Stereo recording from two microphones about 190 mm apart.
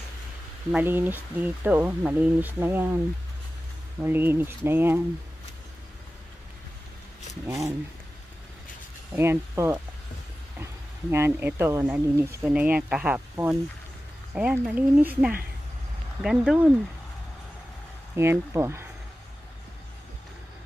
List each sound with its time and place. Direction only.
0.7 s speech: 10° right (ahead or behind)
4.0 s speech: 10° right (ahead or behind)
7.4 s speech: 15° right (ahead or behind)
9.1 s speech: 10° right (ahead or behind)
18.1 s speech: 15° right (ahead or behind)